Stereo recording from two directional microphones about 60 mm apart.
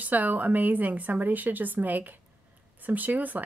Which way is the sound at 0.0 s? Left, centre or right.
Right.